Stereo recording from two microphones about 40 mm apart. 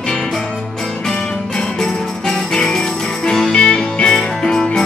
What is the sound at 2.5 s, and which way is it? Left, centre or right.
Music, centre.